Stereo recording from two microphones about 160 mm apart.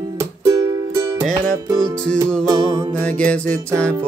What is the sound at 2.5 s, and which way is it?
Music, 20° right (ahead or behind).